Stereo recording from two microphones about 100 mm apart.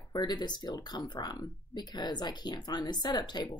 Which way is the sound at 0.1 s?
45° left (ahead or behind).